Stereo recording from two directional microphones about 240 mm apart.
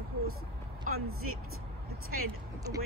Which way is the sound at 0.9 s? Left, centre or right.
Right.